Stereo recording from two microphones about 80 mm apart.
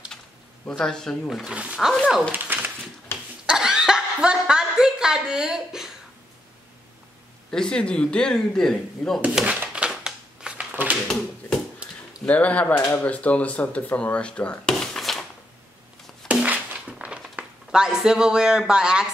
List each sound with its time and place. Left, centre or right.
0.7 s speech: centre
1.5 s speech: centre
3.4 s chuckle: centre
7.5 s speech: centre
9.3 s speech: centre
9.8 s a sound: centre
12.3 s speech: centre
15.0 s a sound: centre
16.3 s a sound: centre
17.6 s speech: centre